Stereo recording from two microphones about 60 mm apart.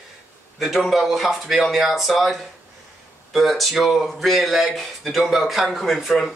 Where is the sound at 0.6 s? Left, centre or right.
Centre.